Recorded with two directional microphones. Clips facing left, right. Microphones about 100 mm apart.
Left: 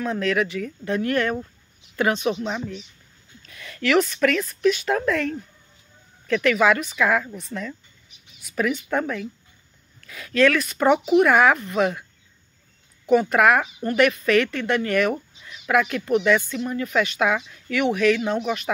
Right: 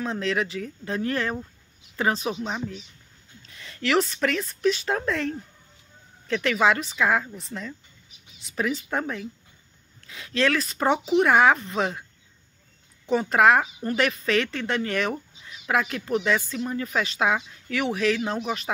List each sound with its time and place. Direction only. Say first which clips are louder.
0.0 s speech: left 3 dB; 30° right (ahead or behind)
3.4 s speech: left 3 dB; 30° right (ahead or behind)
13.1 s speech: left 2 dB; 30° right (ahead or behind)